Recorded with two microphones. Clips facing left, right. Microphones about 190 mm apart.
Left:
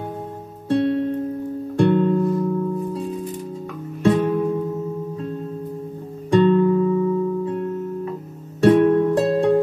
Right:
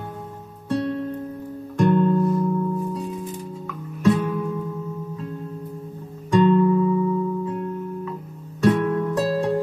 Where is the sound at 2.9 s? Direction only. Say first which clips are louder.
Left 3 dB; 35° left (ahead or behind).